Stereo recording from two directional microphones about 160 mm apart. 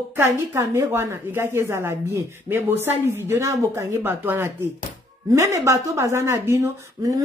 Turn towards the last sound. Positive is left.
turn(degrees=-20)  # may be behind; listen again after turning